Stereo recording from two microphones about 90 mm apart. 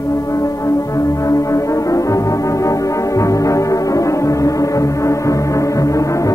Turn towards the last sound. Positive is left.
turn(degrees=35)  # may be behind; listen again after turning